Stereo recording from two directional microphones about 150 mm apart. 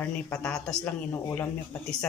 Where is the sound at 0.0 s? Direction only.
10° left (ahead or behind).